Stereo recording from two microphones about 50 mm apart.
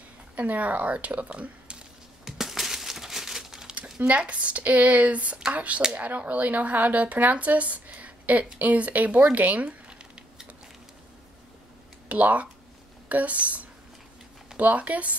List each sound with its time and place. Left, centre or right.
0.4 s speech: right
2.2 s a sound: centre
4.0 s speech: right
12.1 s speech: right